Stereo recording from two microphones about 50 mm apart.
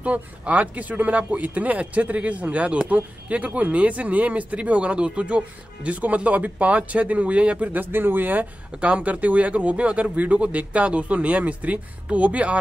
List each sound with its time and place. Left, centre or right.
0.0 s speech: right
8.7 s speech: right